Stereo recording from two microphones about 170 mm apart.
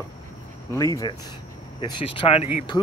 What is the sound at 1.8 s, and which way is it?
Speech, 30° left (ahead or behind).